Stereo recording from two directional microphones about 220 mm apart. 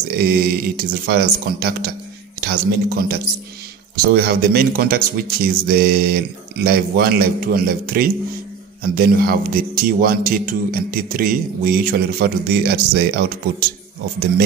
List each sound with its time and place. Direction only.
0.1 s speech: 45° right (ahead or behind)